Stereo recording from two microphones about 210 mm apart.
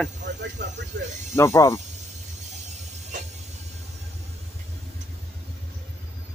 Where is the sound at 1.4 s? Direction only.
15° left (ahead or behind).